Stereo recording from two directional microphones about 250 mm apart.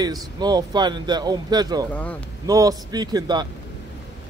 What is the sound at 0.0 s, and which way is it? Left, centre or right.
Speech, centre.